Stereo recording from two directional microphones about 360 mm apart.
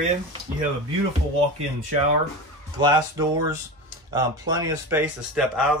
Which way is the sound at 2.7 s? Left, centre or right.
Centre.